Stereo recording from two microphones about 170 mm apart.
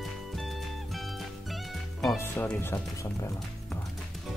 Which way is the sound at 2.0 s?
10° left (ahead or behind).